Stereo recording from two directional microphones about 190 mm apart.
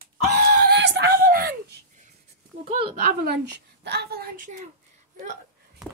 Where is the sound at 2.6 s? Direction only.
30° right (ahead or behind).